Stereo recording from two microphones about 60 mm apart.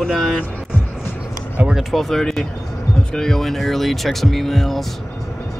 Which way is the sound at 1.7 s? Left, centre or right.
Centre.